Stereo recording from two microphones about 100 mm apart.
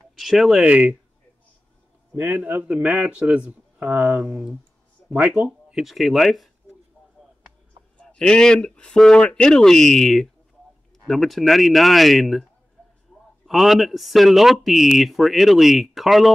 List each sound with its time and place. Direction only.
0.1 s speech: centre (ahead or behind)
2.1 s a man's voice: 20° right (ahead or behind); by 6.5 s centre (ahead or behind)
8.0 s speech: 10° left (ahead or behind)
13.1 s a sound: centre (ahead or behind)
13.5 s speech: centre (ahead or behind)